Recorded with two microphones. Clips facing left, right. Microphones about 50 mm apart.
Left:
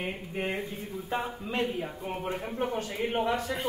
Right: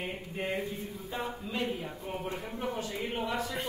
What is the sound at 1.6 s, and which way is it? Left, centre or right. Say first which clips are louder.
Speech: left 4 dB; left.